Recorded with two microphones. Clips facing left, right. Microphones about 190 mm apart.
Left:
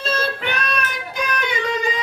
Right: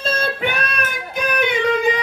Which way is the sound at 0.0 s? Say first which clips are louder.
Right 2 dB; 50° right (ahead or behind).